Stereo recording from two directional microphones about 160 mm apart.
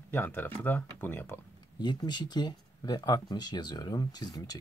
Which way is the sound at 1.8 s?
25° left (ahead or behind).